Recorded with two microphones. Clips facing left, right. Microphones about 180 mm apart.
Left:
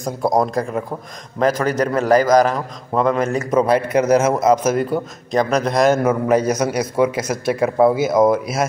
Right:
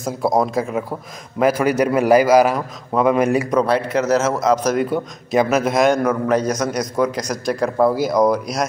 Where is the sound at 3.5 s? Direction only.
5° left (ahead or behind).